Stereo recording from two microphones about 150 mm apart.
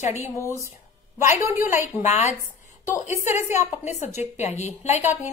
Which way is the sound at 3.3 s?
15° right (ahead or behind).